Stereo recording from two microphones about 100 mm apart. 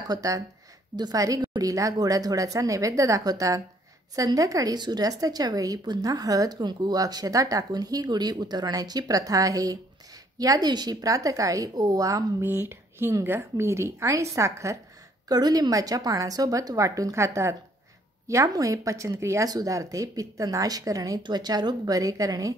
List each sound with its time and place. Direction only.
0.1 s a woman's voice: 35° right (ahead or behind)
1.4 s a sound: 50° right (ahead or behind)
1.7 s a woman's voice: 35° right (ahead or behind)
12.4 s speech: 25° right (ahead or behind)
15.2 s a woman's voice: 40° right (ahead or behind)